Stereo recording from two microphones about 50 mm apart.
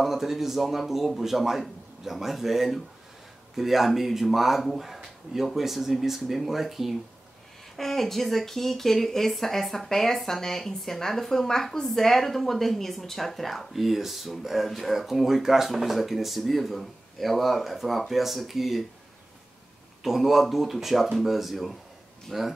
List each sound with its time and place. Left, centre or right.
0.0 s speech: centre
20.0 s speech: centre
22.3 s speech: centre